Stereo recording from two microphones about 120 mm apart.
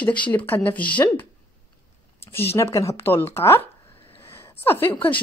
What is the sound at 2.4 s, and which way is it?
A woman's voice, 20° left (ahead or behind).